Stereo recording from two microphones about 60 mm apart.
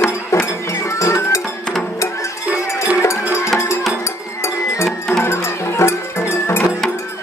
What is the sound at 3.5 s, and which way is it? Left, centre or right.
Music, left.